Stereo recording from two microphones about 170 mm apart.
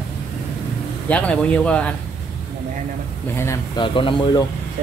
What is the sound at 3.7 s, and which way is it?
Speech, 30° left (ahead or behind).